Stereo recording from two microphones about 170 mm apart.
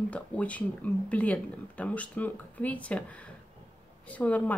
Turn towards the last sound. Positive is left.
turn(degrees=10)  # may be behind; listen again after turning